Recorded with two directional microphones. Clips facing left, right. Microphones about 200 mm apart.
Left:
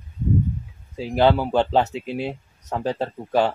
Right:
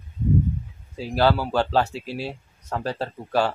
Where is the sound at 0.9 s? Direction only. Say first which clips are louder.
Left 3 dB; 15° left (ahead or behind).